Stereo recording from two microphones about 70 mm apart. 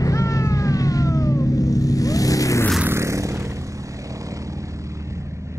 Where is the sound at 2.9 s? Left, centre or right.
Right.